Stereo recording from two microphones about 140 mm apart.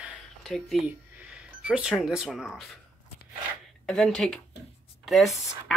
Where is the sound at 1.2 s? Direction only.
10° right (ahead or behind).